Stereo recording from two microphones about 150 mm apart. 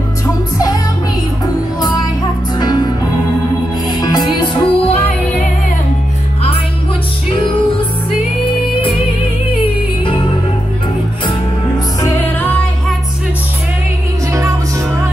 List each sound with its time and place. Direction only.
1.4 s music: 25° left (ahead or behind)
4.0 s music: 30° left (ahead or behind)
7.2 s music: 35° left (ahead or behind)
12.1 s music: 15° left (ahead or behind)